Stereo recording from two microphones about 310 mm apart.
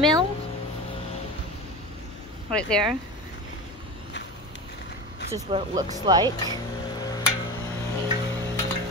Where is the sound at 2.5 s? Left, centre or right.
Centre.